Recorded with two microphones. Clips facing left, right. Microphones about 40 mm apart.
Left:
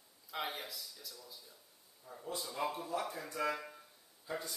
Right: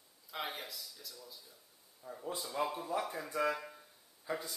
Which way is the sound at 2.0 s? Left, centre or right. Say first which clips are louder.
Right 4 dB; right.